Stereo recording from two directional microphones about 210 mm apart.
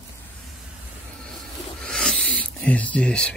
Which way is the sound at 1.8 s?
5° left (ahead or behind).